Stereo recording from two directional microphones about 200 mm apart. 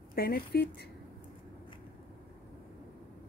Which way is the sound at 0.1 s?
50° left (ahead or behind).